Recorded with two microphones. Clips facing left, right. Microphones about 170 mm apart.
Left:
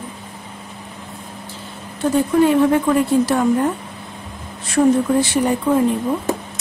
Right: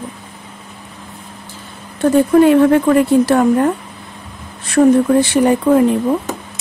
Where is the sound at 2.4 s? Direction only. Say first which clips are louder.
Right 3 dB; 65° right (ahead or behind).